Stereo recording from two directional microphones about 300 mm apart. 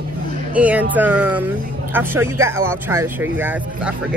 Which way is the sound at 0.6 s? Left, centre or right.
Centre.